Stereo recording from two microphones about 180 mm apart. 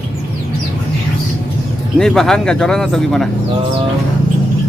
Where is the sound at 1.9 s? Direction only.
Centre (ahead or behind).